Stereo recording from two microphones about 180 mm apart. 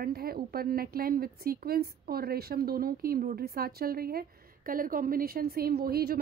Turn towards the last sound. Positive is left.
turn(degrees=-60)  # may be behind; listen again after turning